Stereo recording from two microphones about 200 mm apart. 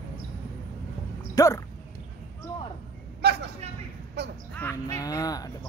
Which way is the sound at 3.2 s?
55° right (ahead or behind).